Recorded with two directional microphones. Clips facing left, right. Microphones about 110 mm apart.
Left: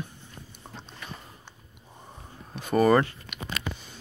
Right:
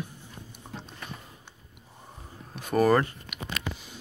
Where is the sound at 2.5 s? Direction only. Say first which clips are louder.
Left 1 dB; centre (ahead or behind).